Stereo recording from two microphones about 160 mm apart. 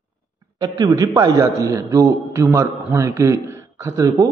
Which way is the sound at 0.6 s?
25° right (ahead or behind).